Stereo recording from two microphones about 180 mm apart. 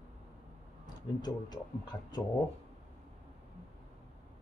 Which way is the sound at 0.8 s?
20° left (ahead or behind).